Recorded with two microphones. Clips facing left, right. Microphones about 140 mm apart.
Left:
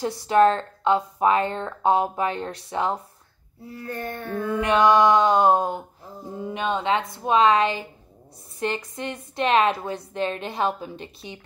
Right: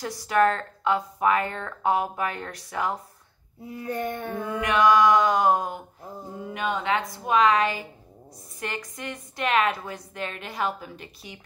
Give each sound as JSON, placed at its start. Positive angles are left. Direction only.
{"t": 0.0, "sound": "speech", "side_deg": 25}
{"t": 3.6, "sound": "a sound", "side_deg": -15}
{"t": 4.6, "sound": "speech", "side_deg": 30}